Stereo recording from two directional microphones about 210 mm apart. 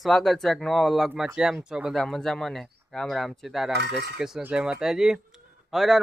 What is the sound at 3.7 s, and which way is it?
Speech, 50° right (ahead or behind).